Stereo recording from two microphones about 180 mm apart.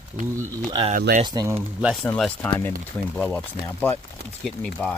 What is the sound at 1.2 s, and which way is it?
Speech, 20° right (ahead or behind).